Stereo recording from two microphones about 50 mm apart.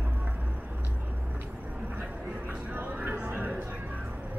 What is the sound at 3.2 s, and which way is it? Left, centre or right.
Music, right.